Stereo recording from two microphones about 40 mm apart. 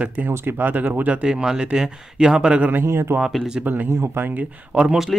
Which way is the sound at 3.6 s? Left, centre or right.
Right.